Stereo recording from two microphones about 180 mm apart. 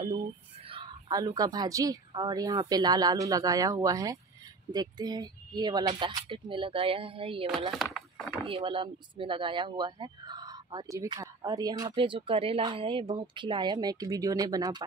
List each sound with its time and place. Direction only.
0.7 s speech: 25° right (ahead or behind)
7.7 s speech: centre (ahead or behind)
8.5 s speech: 30° right (ahead or behind)